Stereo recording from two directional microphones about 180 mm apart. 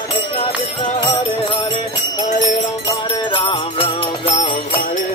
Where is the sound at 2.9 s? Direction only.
25° left (ahead or behind).